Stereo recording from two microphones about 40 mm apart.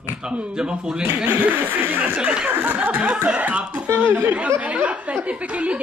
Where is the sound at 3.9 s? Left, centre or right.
Right.